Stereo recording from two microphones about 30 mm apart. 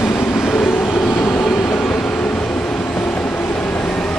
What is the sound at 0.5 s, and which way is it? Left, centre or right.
Train, left.